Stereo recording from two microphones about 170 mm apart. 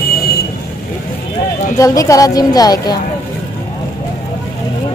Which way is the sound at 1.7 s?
20° left (ahead or behind).